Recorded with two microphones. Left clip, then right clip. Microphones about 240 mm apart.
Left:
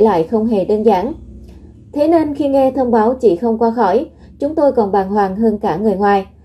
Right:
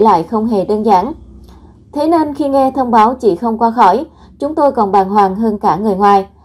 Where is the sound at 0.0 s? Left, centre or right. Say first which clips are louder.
Right 2 dB; right.